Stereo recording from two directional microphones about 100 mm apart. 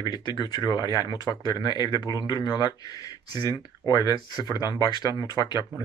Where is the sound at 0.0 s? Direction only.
45° left (ahead or behind).